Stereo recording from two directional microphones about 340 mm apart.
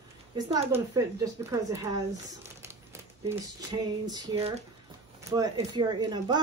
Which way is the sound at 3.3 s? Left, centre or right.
Centre.